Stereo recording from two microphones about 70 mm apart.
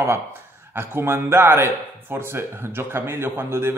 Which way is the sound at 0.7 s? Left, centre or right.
Right.